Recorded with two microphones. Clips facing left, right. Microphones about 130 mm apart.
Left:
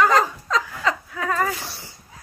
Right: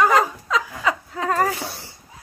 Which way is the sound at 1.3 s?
40° right (ahead or behind).